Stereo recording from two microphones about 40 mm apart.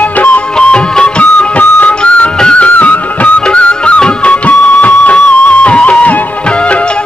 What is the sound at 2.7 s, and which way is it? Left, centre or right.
Music, left.